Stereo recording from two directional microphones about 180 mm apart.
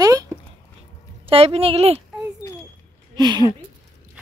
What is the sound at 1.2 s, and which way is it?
Speech, 35° right (ahead or behind).